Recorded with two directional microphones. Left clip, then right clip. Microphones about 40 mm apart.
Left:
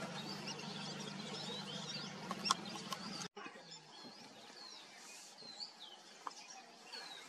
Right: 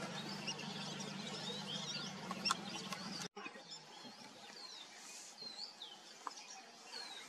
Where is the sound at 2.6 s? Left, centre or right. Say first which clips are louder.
Right 1 dB; centre.